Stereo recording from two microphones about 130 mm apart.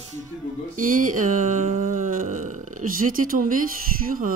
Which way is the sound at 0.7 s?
90° right.